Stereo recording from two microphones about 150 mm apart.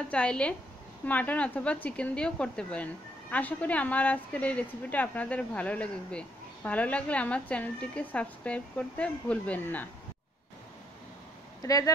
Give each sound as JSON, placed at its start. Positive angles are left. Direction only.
{"t": 0.1, "sound": "speech", "side_deg": 5}
{"t": 11.6, "sound": "speech", "side_deg": 25}